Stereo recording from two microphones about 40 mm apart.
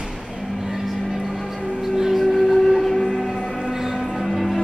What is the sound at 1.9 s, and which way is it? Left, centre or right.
Train, centre.